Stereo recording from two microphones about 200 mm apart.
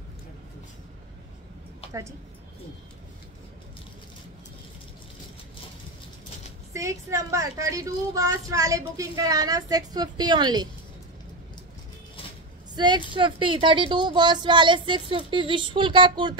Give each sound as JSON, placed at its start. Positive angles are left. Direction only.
{"t": 6.7, "sound": "a woman's voice", "side_deg": -15}
{"t": 12.7, "sound": "a woman's voice", "side_deg": -20}